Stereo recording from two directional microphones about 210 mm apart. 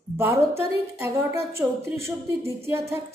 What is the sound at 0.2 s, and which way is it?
A woman's voice, 10° right (ahead or behind).